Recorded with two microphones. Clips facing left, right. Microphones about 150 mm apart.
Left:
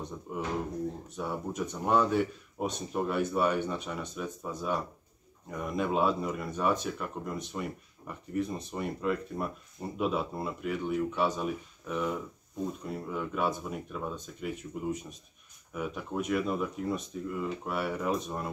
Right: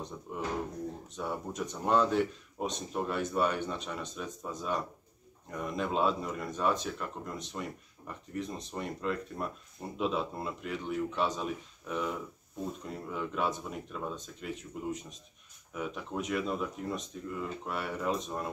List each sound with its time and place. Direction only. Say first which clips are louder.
0.3 s speech: left 2 dB; 5° left (ahead or behind)